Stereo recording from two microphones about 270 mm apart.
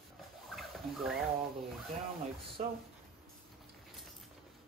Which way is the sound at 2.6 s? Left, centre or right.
Right.